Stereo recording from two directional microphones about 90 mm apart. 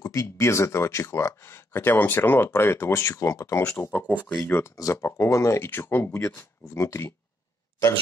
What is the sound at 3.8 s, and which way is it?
Speech, 20° left (ahead or behind).